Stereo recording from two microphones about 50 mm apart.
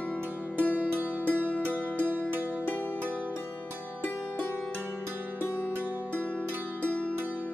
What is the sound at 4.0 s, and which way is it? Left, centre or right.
Music, left.